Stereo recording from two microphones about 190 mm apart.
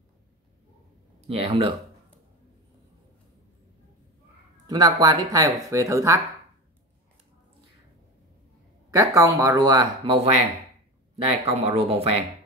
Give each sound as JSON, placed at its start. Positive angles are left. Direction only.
{"t": 1.2, "sound": "speech", "side_deg": -30}
{"t": 4.6, "sound": "speech", "side_deg": -20}
{"t": 8.9, "sound": "speech", "side_deg": -15}